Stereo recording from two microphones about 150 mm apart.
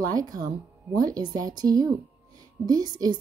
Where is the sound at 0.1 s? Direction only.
25° right (ahead or behind).